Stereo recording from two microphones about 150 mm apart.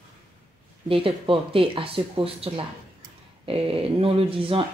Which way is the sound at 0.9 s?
35° right (ahead or behind).